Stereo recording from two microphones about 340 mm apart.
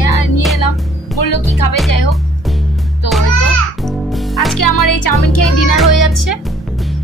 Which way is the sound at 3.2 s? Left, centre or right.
Left.